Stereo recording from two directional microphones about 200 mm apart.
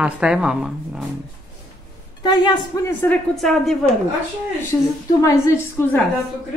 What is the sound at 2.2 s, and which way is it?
Speech, 20° left (ahead or behind).